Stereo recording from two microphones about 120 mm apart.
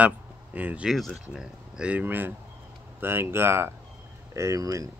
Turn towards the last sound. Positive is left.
turn(degrees=-25)  # may be behind; listen again after turning